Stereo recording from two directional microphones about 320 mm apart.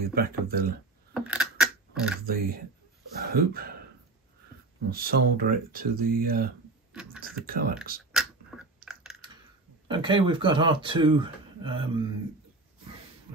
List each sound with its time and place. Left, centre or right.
0.0 s speech: right
1.1 s keys jangling: centre
2.2 s speech: right
4.8 s speech: right
6.9 s beatboxing: centre
7.4 s speech: right
8.1 s a sound: centre
8.9 s chewing: centre
9.8 s speech: centre